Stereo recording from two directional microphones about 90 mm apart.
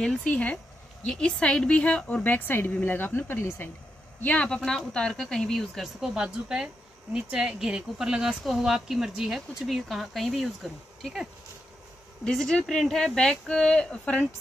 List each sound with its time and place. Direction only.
0.0 s a woman's voice: 15° left (ahead or behind)
4.2 s speech: 15° left (ahead or behind)
12.3 s speech: 5° left (ahead or behind)